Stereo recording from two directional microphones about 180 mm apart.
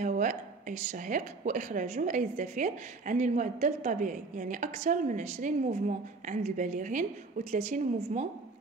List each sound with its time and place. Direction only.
0.0 s a woman's voice: 45° right (ahead or behind)